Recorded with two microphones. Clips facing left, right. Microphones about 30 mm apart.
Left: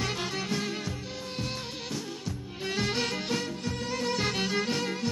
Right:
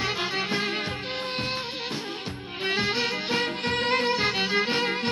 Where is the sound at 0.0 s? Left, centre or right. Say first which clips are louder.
Right 5 dB; right.